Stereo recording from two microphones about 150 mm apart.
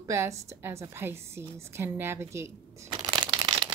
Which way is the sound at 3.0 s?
30° right (ahead or behind).